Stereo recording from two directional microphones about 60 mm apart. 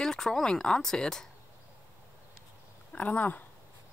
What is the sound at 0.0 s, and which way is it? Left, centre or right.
Speech, centre.